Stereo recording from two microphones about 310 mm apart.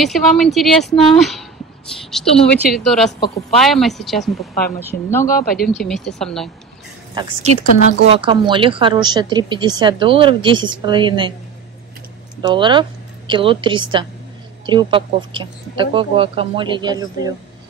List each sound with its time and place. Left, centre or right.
0.0 s speech: centre
3.1 s speech: left
3.5 s speech: centre
5.2 s speech: left
5.9 s speech: centre
7.2 s speech: centre
12.4 s speech: centre